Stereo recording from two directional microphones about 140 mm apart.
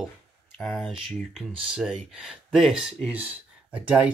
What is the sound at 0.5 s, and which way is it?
Speech, 5° left (ahead or behind).